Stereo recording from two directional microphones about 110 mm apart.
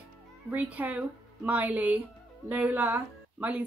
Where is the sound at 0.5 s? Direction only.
15° right (ahead or behind).